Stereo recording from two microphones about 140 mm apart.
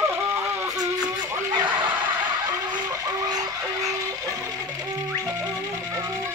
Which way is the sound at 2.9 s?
25° right (ahead or behind).